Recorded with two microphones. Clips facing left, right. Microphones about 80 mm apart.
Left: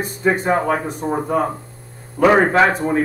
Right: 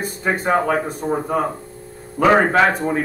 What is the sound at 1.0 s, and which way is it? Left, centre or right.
Speech, centre.